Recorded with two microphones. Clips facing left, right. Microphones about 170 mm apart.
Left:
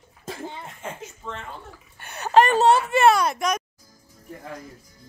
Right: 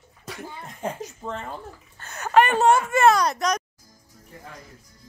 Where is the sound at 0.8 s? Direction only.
40° right (ahead or behind).